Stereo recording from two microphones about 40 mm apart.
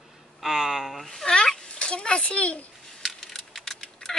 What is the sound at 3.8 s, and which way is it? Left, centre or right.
Typing, centre.